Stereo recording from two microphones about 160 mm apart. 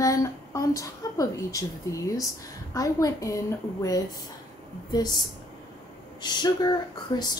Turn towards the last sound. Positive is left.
turn(degrees=25)  # may be behind; listen again after turning